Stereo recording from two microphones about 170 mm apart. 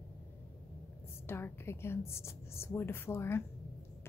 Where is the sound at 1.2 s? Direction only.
15° left (ahead or behind).